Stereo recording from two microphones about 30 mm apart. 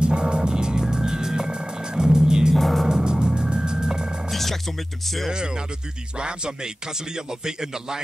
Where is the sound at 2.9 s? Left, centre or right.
Right.